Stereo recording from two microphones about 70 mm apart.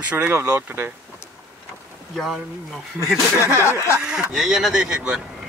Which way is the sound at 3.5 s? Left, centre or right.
Left.